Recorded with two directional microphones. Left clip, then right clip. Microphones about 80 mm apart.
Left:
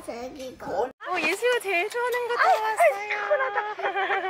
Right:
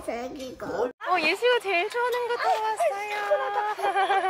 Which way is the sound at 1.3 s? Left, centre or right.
Centre.